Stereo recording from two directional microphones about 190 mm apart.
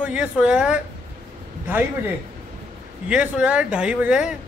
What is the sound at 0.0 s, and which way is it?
Speech, 5° right (ahead or behind).